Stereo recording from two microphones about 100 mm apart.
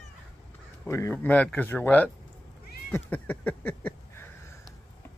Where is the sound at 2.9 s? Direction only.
20° left (ahead or behind).